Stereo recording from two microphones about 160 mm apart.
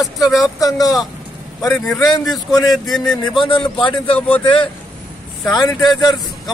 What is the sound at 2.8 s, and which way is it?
Speech, 5° left (ahead or behind).